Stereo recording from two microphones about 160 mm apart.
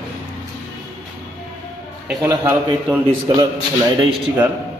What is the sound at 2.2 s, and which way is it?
Speech, 15° right (ahead or behind).